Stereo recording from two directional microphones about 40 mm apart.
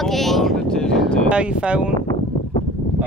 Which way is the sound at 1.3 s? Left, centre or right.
Right.